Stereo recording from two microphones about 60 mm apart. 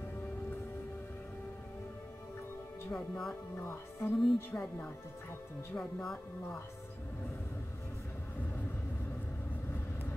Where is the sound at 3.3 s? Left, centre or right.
Left.